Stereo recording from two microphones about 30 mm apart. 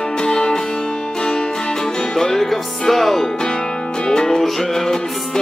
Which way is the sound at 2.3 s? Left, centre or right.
Centre.